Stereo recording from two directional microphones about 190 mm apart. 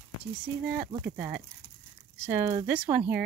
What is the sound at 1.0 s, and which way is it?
Speech, 10° right (ahead or behind).